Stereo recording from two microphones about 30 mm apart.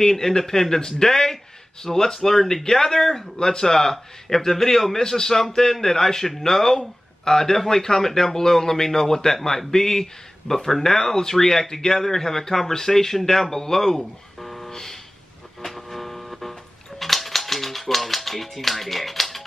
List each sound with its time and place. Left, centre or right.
0.0 s speech: centre
3.3 s speech: left; by 14.7 s centre
14.7 s a sound: centre
15.6 s music: centre
17.0 s typewriter: centre